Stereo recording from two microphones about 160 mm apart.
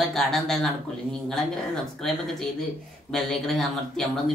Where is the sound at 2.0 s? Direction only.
5° left (ahead or behind).